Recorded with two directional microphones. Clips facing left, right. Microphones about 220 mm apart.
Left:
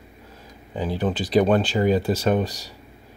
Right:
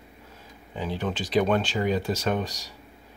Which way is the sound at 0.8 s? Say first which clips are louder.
Left 5 dB; 35° left (ahead or behind).